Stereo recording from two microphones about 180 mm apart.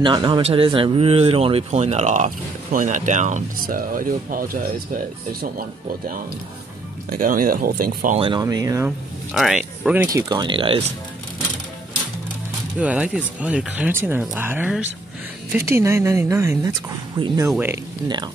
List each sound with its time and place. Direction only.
0.0 s speech: 25° right (ahead or behind); by 4.5 s 50° right (ahead or behind)
7.1 s speech: 50° right (ahead or behind)
8.2 s speech: 25° right (ahead or behind)
9.3 s speech: centre (ahead or behind)
10.0 s speech: 20° right (ahead or behind)
12.7 s speech: 5° right (ahead or behind)
18.0 s speech: 25° right (ahead or behind)